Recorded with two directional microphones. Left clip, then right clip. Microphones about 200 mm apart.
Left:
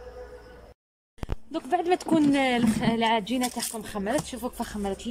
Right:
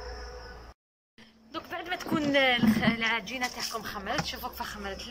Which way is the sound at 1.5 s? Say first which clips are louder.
Left 10 dB; 55° left (ahead or behind).